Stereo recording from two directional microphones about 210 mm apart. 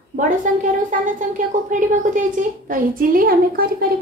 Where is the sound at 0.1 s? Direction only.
35° right (ahead or behind).